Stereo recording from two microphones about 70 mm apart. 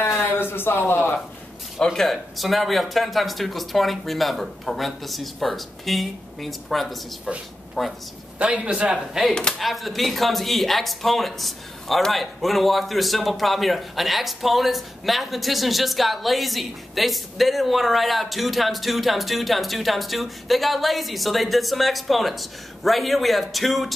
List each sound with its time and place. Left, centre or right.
0.0 s a sound: left
2.0 s a man's voice: centre
8.4 s a man's voice: centre
9.3 s speech: centre
9.6 s speech: centre